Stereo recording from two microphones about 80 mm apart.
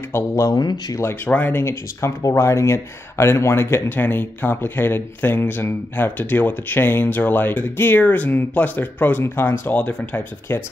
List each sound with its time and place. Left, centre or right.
0.1 s speech: left
0.6 s speech: left
0.9 s speech: left
9.7 s speech: centre